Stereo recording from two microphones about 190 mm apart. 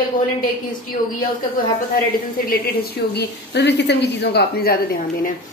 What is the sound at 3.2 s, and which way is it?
A woman's voice, 65° left (ahead or behind).